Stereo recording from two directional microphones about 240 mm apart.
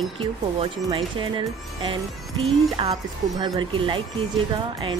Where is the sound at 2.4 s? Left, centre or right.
Centre.